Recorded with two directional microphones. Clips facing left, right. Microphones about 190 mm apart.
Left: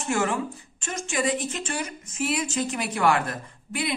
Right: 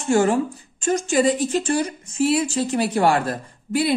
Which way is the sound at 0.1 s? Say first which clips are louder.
Right 8 dB; 30° right (ahead or behind).